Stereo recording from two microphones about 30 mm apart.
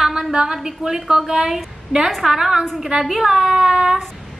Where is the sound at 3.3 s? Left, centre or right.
Centre.